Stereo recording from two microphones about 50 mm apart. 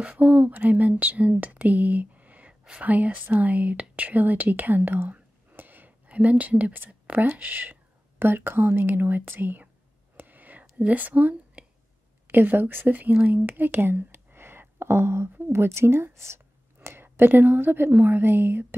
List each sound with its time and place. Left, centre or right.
0.0 s a woman's voice: right
10.1 s whispering: right
10.8 s a woman's voice: right